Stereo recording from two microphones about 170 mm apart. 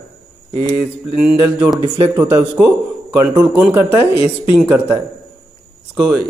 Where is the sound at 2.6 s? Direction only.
10° right (ahead or behind).